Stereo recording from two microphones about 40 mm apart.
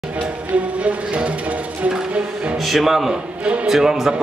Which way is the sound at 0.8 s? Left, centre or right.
Right.